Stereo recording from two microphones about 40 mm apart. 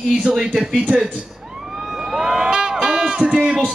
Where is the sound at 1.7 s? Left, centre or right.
Centre.